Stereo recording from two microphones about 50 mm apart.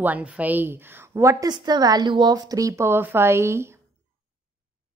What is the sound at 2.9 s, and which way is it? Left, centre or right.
Speech, right.